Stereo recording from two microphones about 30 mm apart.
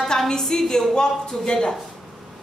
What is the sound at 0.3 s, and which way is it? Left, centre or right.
A woman's voice, centre.